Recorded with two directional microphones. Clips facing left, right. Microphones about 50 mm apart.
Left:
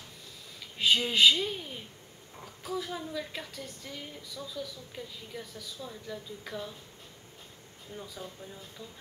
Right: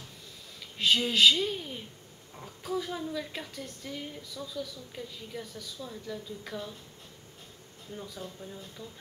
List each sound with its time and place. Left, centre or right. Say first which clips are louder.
0.7 s a woman's voice: even; centre
7.9 s a woman's voice: right 1 dB; centre